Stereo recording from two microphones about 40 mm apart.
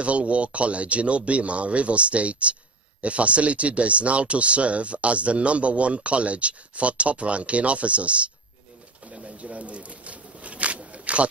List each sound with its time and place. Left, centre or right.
0.0 s speech: right
10.4 s biting: right